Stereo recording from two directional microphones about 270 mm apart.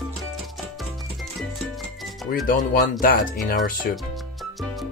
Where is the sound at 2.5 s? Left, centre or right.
Left.